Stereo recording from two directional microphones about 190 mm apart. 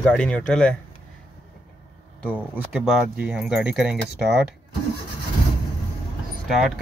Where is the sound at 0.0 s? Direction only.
5° left (ahead or behind).